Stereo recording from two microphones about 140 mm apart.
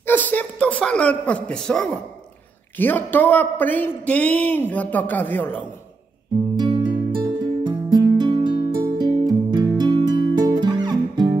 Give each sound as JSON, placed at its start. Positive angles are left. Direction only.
{"t": 0.0, "sound": "a man's voice", "side_deg": 10}
{"t": 6.6, "sound": "music", "side_deg": -30}